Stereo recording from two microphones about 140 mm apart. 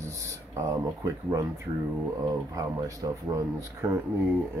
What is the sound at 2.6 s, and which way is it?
Speech, 25° right (ahead or behind).